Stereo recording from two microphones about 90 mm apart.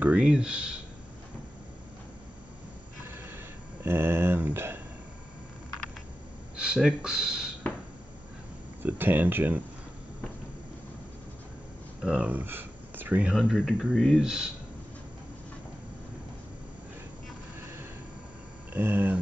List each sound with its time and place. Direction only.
0.0 s speech: 10° right (ahead or behind)
3.8 s speech: 25° right (ahead or behind)
6.5 s a sound: 10° right (ahead or behind)
7.0 s speech: 10° right (ahead or behind)
8.8 s speech: 20° right (ahead or behind)
12.0 s speech: 10° right (ahead or behind)
12.3 s speech: 20° right (ahead or behind)
13.6 s speech: 5° left (ahead or behind)
14.2 s speech: 10° right (ahead or behind)
18.7 s speech: 25° right (ahead or behind)